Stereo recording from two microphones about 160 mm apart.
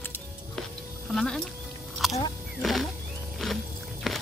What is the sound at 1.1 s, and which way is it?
Music, 5° left (ahead or behind).